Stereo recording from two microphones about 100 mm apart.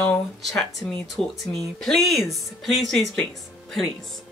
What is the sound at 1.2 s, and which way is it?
Speech, 5° left (ahead or behind).